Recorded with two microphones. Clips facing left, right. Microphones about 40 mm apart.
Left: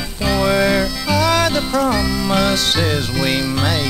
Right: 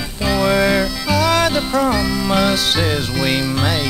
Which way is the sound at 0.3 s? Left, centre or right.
Centre.